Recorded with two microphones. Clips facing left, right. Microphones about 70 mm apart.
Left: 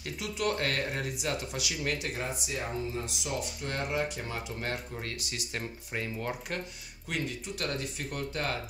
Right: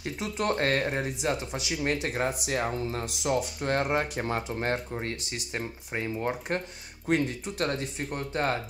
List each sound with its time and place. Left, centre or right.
0.0 s speech: right
2.0 s speech: right
2.4 s speech: right
7.1 s speech: right